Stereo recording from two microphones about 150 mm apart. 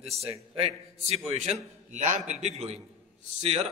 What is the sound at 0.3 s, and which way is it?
A man's voice, 40° right (ahead or behind).